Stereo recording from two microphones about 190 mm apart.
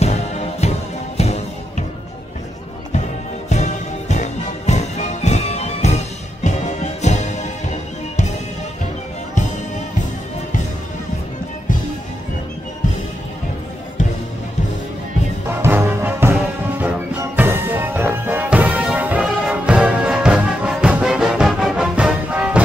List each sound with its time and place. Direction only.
0.0 s music: 35° left (ahead or behind)
3.4 s music: 40° left (ahead or behind)
15.6 s music: 10° right (ahead or behind)